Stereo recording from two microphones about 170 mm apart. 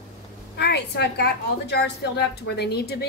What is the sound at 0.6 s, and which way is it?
A woman's voice, 80° left.